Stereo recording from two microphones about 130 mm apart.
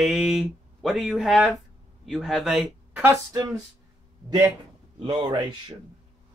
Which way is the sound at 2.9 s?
20° right (ahead or behind).